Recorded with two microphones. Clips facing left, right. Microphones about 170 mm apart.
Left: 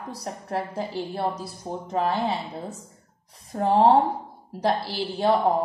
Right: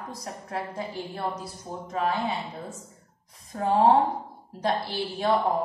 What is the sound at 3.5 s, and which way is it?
A woman's voice, 30° left (ahead or behind).